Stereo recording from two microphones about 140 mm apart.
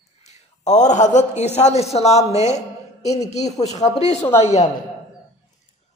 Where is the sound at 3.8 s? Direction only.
55° left (ahead or behind).